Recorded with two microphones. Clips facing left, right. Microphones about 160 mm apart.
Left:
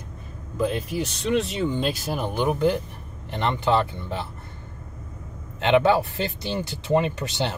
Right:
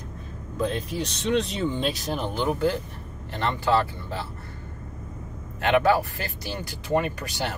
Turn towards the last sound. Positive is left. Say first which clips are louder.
# left 3 dB
turn(degrees=25)  # may be behind; listen again after turning